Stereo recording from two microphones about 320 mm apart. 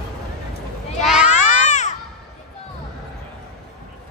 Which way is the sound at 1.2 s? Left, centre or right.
Left.